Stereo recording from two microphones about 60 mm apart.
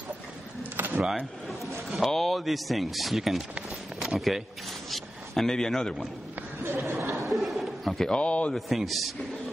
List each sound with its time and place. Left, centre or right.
0.7 s a sound: right
1.9 s a man's voice: centre
6.6 s speech: right
7.2 s a sound: centre
8.1 s speech: centre
8.5 s speech: centre